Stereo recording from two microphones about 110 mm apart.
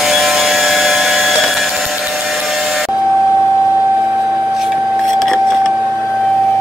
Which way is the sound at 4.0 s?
15° right (ahead or behind).